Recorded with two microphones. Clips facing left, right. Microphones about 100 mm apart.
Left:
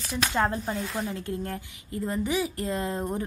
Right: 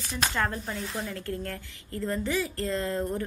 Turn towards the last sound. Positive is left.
turn(degrees=20)  # may be behind; listen again after turning